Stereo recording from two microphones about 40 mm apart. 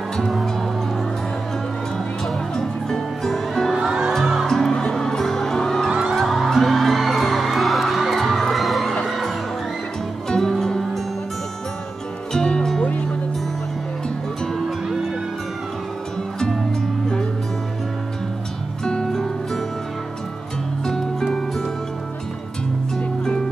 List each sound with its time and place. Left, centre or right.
0.3 s music: centre
2.5 s music: centre
3.7 s music: centre
4.5 s music: centre
5.9 s music: centre
6.2 s music: centre
10.2 s music: centre
12.3 s music: centre
19.0 s music: centre
20.8 s music: centre
22.9 s music: left